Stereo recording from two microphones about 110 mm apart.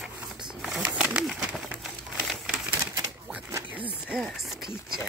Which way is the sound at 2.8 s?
25° right (ahead or behind).